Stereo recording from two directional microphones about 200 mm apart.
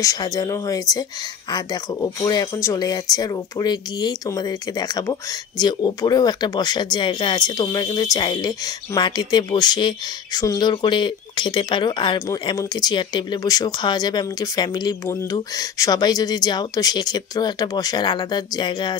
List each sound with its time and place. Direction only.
0.0 s speech: 15° left (ahead or behind)